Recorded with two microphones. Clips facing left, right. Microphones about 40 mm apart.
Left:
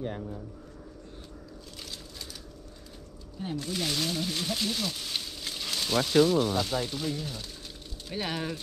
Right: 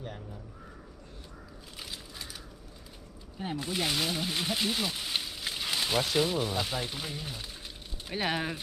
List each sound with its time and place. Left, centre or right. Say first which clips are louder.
0.0 s speech: left 7 dB; left
1.8 s crushing: right 2 dB; centre
3.3 s speech: even; right